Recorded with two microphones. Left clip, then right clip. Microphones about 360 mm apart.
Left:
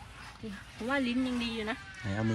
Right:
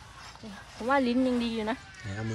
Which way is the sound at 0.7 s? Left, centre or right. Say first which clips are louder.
Right 6 dB; centre.